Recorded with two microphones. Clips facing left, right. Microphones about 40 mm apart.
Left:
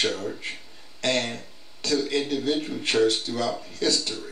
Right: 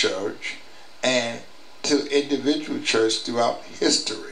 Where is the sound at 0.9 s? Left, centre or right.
Right.